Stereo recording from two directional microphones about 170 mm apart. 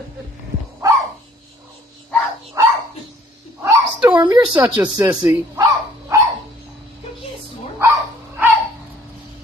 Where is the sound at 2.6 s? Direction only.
20° right (ahead or behind).